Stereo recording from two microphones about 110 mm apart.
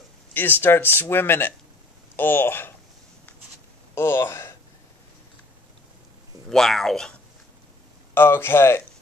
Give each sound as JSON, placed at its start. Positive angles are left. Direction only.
{"t": 0.3, "sound": "speech", "side_deg": 20}
{"t": 3.9, "sound": "speech", "side_deg": 25}
{"t": 6.5, "sound": "speech", "side_deg": 0}
{"t": 8.1, "sound": "speech", "side_deg": 20}